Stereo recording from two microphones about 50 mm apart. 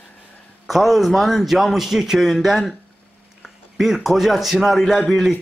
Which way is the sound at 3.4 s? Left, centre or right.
Centre.